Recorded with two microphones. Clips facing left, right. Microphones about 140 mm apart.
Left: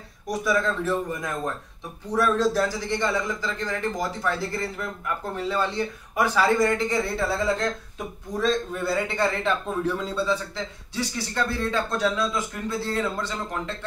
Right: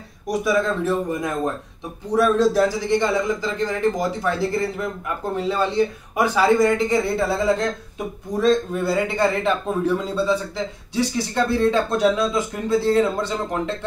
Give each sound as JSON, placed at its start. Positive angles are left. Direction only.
{"t": 0.3, "sound": "a man's voice", "side_deg": -15}